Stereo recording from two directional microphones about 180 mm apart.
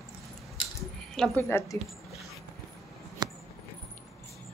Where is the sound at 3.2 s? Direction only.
25° right (ahead or behind).